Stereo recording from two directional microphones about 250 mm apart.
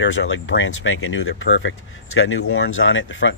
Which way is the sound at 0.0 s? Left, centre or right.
Left.